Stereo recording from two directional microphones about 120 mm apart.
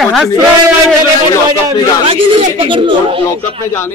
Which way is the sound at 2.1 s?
50° right (ahead or behind).